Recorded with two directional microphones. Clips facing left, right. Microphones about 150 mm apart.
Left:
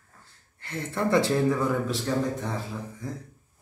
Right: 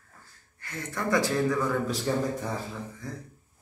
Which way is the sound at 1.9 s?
Centre (ahead or behind).